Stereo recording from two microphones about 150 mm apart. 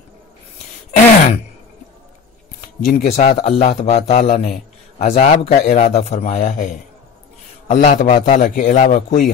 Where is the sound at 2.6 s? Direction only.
75° left (ahead or behind).